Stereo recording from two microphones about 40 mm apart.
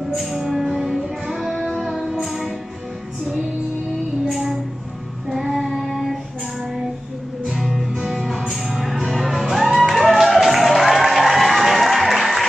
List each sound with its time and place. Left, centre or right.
0.2 s music: centre
4.3 s a sound: centre
5.3 s child singing: centre
7.5 s music: centre